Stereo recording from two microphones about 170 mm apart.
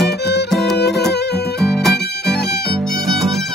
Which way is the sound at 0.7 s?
75° left (ahead or behind).